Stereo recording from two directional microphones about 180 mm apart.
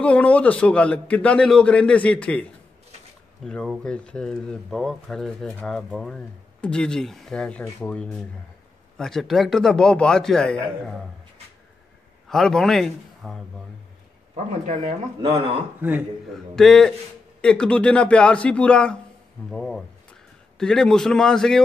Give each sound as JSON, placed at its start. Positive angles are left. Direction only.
{"t": 0.0, "sound": "a man's voice", "side_deg": 5}
{"t": 3.4, "sound": "speech", "side_deg": 0}
{"t": 12.3, "sound": "a man's voice", "side_deg": 5}
{"t": 14.3, "sound": "speech", "side_deg": -40}
{"t": 15.3, "sound": "speech", "side_deg": -10}
{"t": 16.5, "sound": "speech", "side_deg": 0}